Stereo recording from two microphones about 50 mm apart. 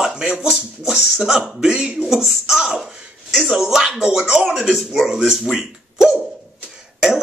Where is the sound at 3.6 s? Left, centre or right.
Centre.